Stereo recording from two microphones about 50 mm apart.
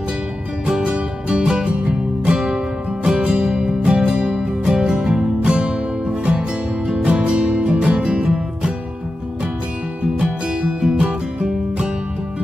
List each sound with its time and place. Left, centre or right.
0.7 s music: centre
7.1 s music: right
10.6 s music: centre